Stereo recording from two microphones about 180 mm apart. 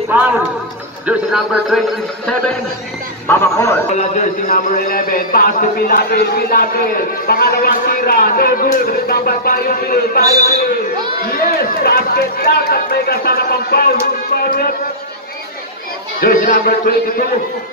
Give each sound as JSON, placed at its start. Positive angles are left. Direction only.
{"t": 0.1, "sound": "speech", "side_deg": -10}
{"t": 3.3, "sound": "speech", "side_deg": 15}
{"t": 3.9, "sound": "a man's voice", "side_deg": 45}
{"t": 16.2, "sound": "speech", "side_deg": 50}